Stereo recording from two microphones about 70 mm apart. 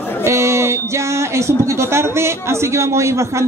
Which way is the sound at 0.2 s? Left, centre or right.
Right.